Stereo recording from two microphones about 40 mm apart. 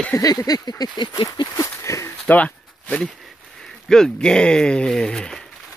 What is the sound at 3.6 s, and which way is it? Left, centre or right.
Speech, centre.